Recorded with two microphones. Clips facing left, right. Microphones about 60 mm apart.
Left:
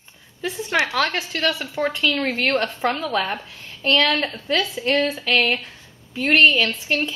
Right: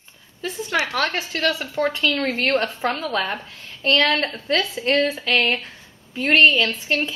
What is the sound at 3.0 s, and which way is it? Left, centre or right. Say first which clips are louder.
A woman's voice: left 1 dB; centre.